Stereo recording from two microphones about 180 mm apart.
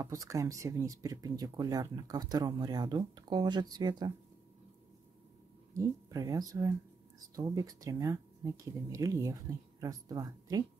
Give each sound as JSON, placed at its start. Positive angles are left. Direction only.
{"t": 0.0, "sound": "speech", "side_deg": -20}
{"t": 5.8, "sound": "speech", "side_deg": -20}